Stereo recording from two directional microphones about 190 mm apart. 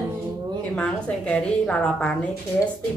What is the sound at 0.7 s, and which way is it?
A woman's voice, 5° left (ahead or behind).